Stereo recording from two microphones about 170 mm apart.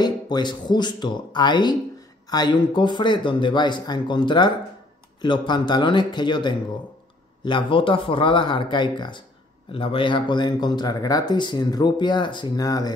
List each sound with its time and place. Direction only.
0.0 s speech: 25° left (ahead or behind)